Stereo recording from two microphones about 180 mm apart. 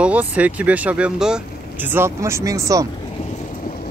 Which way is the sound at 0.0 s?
10° right (ahead or behind).